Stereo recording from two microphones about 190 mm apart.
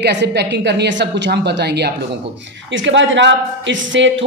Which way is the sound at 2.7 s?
75° right (ahead or behind).